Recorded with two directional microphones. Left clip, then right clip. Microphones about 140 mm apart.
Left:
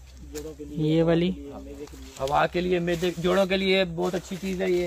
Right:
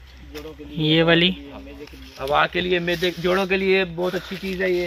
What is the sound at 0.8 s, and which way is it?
Speech, 10° left (ahead or behind).